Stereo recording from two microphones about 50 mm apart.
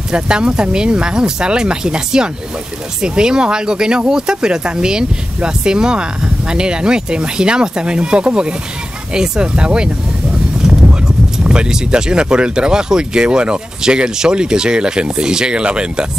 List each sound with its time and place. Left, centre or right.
0.1 s speech: centre
10.6 s horse: centre
11.3 s speech: centre